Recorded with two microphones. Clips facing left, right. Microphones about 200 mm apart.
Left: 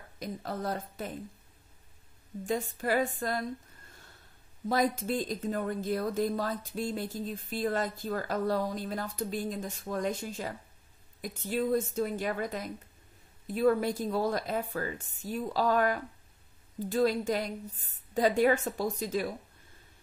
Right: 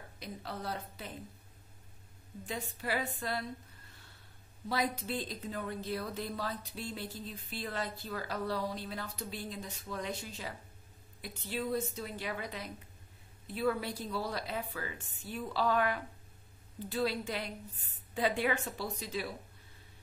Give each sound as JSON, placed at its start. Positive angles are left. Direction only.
{"t": 0.2, "sound": "speech", "side_deg": 45}
{"t": 2.4, "sound": "speech", "side_deg": 45}
{"t": 4.6, "sound": "speech", "side_deg": 45}